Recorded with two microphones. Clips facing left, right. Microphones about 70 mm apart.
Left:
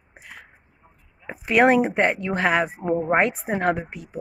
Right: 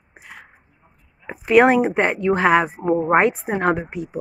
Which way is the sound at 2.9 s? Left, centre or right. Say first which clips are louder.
Right 3 dB; right.